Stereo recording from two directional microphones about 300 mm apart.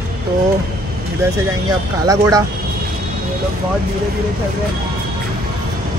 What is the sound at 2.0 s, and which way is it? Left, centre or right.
Speech, centre.